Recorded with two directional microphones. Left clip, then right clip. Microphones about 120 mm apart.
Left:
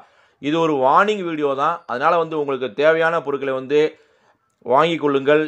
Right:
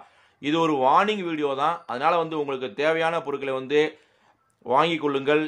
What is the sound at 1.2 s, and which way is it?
Speech, 30° left (ahead or behind).